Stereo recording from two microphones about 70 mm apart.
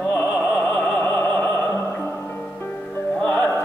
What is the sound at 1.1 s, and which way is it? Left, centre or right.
Music, left.